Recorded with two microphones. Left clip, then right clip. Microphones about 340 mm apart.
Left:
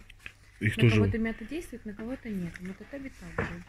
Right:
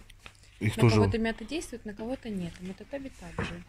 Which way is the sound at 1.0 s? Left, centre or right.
Right.